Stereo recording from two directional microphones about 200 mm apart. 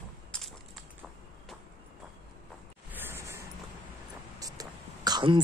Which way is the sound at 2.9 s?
10° right (ahead or behind).